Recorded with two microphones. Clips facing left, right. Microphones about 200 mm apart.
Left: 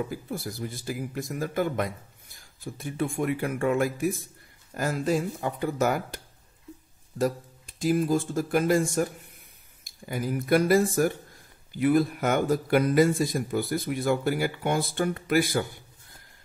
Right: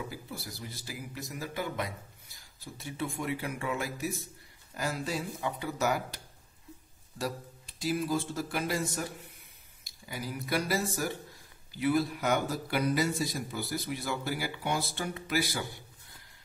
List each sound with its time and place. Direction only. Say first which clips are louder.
0.0 s a man's voice: left 8 dB; 50° left (ahead or behind)